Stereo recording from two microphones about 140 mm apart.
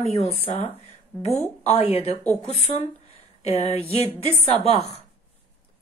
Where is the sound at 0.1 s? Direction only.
45° left (ahead or behind).